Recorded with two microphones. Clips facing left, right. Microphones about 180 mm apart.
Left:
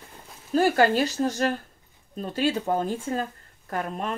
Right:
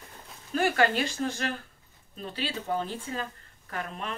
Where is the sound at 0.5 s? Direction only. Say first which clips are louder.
Left 5 dB; 40° left (ahead or behind).